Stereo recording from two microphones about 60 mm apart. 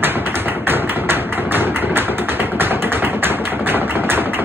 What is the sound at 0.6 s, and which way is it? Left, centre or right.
Tap, right.